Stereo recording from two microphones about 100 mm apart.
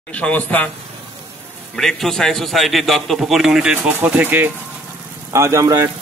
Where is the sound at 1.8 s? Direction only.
5° left (ahead or behind); by 4.5 s 15° right (ahead or behind).